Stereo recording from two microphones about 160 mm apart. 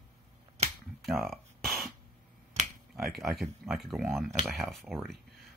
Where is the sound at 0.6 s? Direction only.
45° right (ahead or behind).